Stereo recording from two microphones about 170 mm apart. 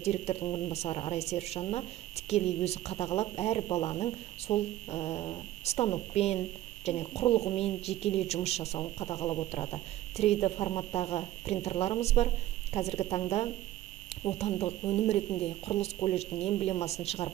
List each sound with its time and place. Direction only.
0.0 s speech: 40° left (ahead or behind)
9.1 s speech: 25° left (ahead or behind)
9.5 s speech: 35° left (ahead or behind)
14.4 s speech: 35° left (ahead or behind)